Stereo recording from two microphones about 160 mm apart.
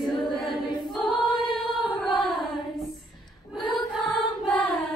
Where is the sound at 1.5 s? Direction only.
35° left (ahead or behind).